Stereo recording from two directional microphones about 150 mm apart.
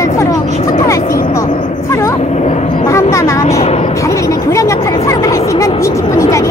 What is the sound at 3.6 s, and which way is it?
Speech, 40° left (ahead or behind).